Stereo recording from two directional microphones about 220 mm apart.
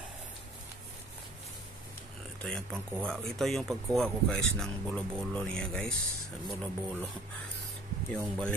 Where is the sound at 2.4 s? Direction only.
5° left (ahead or behind).